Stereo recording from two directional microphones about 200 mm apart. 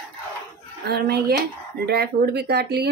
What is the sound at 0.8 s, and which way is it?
Speech, 55° right (ahead or behind).